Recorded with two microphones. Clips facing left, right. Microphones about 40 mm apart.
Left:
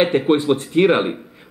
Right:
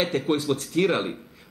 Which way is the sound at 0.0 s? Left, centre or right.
Left.